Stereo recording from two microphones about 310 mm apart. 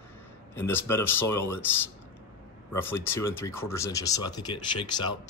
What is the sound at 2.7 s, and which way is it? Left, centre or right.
Speech, centre.